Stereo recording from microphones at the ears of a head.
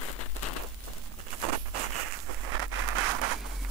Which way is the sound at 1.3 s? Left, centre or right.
Right.